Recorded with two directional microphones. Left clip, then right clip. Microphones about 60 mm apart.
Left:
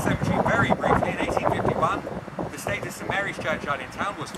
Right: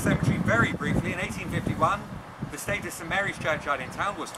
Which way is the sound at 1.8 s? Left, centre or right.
Centre.